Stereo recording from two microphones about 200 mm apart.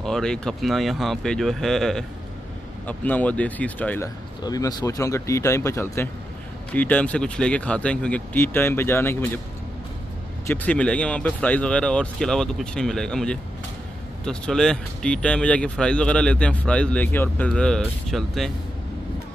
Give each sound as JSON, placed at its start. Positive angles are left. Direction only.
{"t": 0.0, "sound": "speech", "side_deg": 5}
{"t": 4.4, "sound": "speech", "side_deg": 20}
{"t": 10.4, "sound": "speech", "side_deg": 10}